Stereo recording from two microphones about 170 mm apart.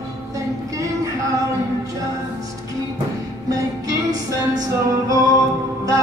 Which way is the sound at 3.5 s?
20° right (ahead or behind).